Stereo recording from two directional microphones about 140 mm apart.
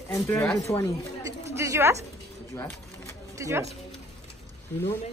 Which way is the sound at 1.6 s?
20° right (ahead or behind).